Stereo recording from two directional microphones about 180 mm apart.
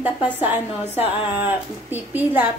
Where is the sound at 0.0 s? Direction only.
10° right (ahead or behind).